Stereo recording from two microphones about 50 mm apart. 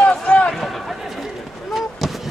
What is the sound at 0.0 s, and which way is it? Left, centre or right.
Run, left.